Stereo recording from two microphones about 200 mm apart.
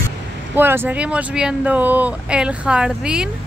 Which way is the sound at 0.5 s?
10° right (ahead or behind).